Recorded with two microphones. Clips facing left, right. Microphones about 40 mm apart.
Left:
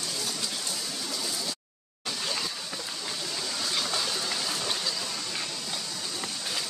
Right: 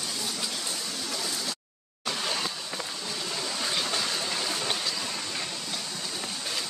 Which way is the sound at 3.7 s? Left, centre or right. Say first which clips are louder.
Even; centre.